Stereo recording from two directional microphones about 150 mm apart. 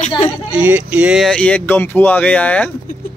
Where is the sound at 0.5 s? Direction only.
10° right (ahead or behind).